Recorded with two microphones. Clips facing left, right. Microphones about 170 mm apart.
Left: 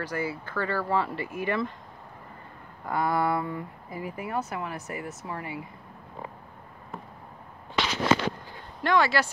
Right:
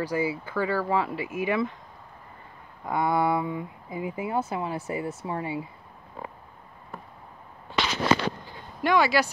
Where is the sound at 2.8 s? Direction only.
20° right (ahead or behind).